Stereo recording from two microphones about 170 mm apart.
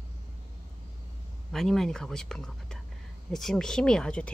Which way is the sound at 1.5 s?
Centre (ahead or behind).